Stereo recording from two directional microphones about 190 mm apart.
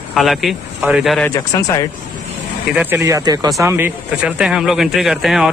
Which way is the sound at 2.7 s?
10° right (ahead or behind).